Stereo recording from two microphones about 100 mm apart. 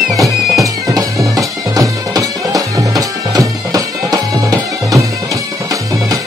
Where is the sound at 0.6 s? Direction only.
35° right (ahead or behind).